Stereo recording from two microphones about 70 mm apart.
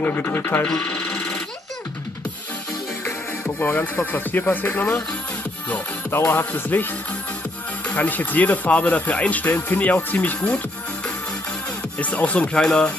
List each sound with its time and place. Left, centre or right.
0.0 s speech: left
0.7 s a sound: centre
3.1 s music: left
3.9 s speech: left
12.0 s speech: left